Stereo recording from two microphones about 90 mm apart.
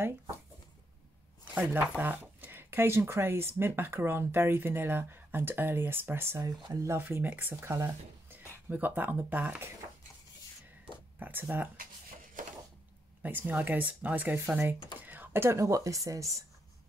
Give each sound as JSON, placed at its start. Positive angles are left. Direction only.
{"t": 1.5, "sound": "speech", "side_deg": -20}
{"t": 6.7, "sound": "speech", "side_deg": -35}
{"t": 7.0, "sound": "speech", "side_deg": -20}
{"t": 11.1, "sound": "speech", "side_deg": -20}
{"t": 13.2, "sound": "speech", "side_deg": -20}